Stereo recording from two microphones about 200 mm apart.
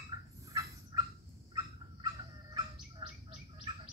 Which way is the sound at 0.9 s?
20° right (ahead or behind).